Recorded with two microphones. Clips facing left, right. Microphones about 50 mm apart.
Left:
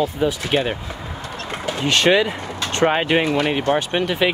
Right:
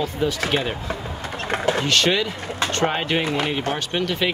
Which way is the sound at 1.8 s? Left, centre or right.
Centre.